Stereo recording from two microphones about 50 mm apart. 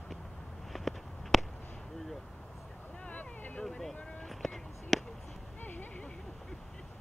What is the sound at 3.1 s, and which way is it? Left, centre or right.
Vehicle, left.